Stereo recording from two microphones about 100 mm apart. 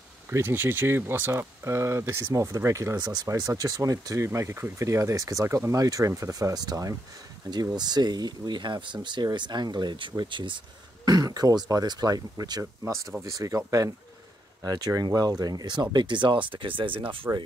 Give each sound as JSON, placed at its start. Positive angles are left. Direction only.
{"t": 0.3, "sound": "speech", "side_deg": -25}
{"t": 11.1, "sound": "speech", "side_deg": -40}